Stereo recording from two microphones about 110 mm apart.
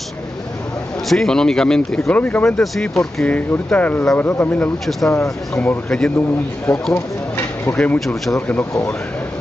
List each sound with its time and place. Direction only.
1.0 s a man's voice: 5° left (ahead or behind)
6.9 s a sound: 20° left (ahead or behind)
7.7 s a man's voice: 15° left (ahead or behind)